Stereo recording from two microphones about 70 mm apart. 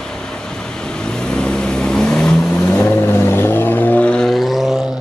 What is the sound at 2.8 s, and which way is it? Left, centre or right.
Vehicle, left.